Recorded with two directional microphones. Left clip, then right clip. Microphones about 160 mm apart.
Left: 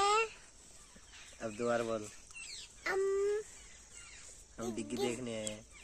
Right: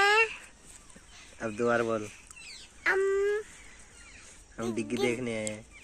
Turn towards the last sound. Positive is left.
turn(degrees=-20)  # may be behind; listen again after turning